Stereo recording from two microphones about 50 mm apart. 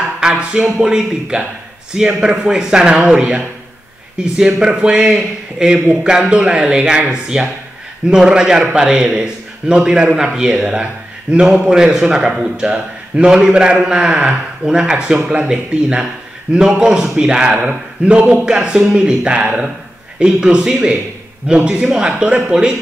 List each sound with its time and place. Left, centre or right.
0.2 s a man's voice: centre
11.7 s a man's voice: centre